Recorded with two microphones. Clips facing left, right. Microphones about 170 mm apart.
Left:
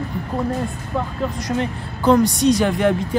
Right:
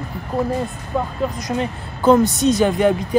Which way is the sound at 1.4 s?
20° right (ahead or behind).